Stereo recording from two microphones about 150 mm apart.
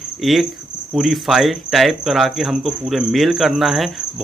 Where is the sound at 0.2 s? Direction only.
Centre (ahead or behind).